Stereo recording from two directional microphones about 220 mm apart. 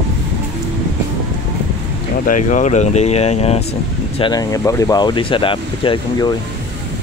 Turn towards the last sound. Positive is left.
turn(degrees=25)  # may be behind; listen again after turning